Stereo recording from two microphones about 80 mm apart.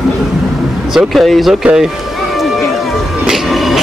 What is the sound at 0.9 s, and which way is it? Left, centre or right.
Speech, centre.